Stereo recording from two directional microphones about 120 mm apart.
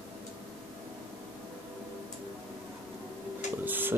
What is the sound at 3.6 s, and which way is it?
Printer, 15° right (ahead or behind).